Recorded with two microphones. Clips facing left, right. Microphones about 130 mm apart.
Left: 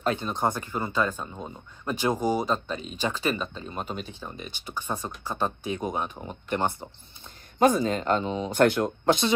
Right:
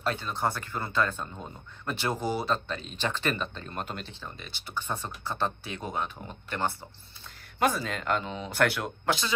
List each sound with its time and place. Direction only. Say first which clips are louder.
0.2 s speech: left 3 dB; 20° left (ahead or behind)
4.1 s speech: left 4 dB; 15° left (ahead or behind)